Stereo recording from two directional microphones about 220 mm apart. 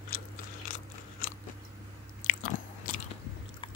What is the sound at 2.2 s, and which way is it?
Biting, 35° left (ahead or behind).